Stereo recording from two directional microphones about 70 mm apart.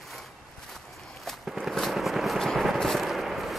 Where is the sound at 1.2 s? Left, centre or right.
Centre.